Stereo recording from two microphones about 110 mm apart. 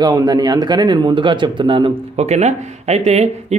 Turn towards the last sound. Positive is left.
turn(degrees=-75)  # may be behind; listen again after turning